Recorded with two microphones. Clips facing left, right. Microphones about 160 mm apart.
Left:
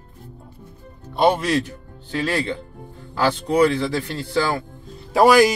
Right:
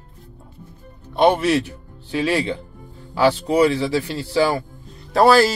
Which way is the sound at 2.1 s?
15° right (ahead or behind).